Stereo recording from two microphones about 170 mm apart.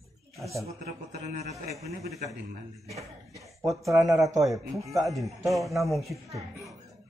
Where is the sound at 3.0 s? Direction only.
20° right (ahead or behind).